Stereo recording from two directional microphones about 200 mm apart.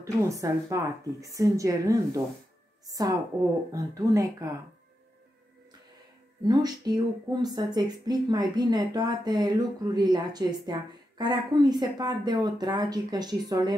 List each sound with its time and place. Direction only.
0.4 s speech: 15° right (ahead or behind)
6.4 s speech: 20° right (ahead or behind)